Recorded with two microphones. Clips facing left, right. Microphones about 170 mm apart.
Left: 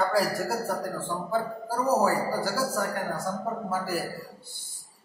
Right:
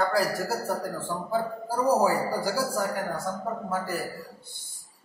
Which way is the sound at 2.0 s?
10° right (ahead or behind).